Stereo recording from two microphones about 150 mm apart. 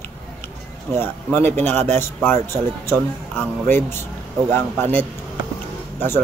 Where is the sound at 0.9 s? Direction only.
15° left (ahead or behind).